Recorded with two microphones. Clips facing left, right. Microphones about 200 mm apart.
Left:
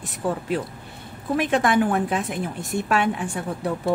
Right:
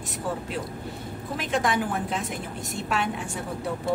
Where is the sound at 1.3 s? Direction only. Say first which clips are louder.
Left 6 dB; 60° left (ahead or behind).